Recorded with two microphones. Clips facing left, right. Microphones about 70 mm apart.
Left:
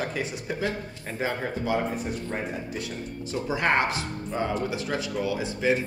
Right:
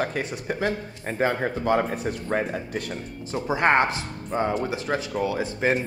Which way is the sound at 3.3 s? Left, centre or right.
Right.